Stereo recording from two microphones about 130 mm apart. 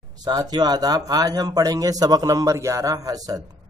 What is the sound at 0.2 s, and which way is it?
Speech, 30° right (ahead or behind).